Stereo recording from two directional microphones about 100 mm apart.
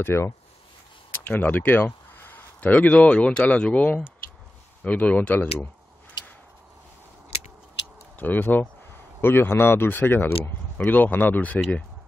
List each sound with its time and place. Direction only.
0.0 s speech: 25° left (ahead or behind)
8.2 s speech: 15° left (ahead or behind)